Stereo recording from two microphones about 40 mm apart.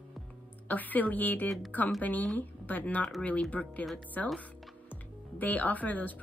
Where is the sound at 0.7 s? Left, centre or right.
Left.